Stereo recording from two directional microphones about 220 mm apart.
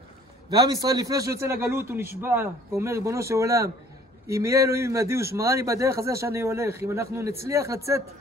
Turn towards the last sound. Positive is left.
turn(degrees=-15)  # may be behind; listen again after turning